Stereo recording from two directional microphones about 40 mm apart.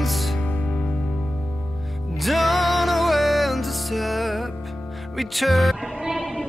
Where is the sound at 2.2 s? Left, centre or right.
Centre.